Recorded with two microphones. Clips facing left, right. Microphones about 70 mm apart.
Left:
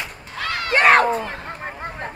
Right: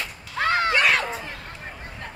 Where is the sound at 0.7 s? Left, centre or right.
Left.